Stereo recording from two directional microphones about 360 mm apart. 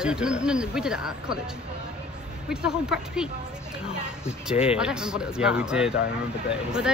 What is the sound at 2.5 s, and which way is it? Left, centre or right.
Speech, centre.